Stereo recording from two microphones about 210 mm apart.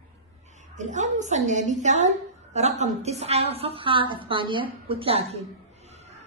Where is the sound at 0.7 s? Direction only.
35° right (ahead or behind).